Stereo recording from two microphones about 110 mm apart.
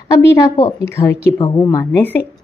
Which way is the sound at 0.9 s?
25° left (ahead or behind).